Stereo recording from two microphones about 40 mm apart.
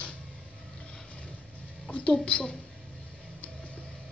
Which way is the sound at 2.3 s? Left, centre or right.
Left.